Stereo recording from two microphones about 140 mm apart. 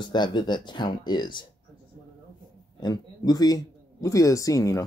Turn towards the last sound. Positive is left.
turn(degrees=25)  # may be behind; listen again after turning